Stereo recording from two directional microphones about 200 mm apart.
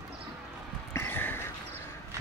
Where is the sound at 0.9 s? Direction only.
10° left (ahead or behind).